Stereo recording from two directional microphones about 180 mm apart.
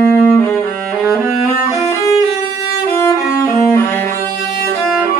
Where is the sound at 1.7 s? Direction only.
15° left (ahead or behind).